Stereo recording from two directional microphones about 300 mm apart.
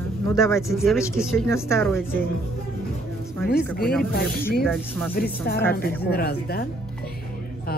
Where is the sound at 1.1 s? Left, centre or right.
Centre.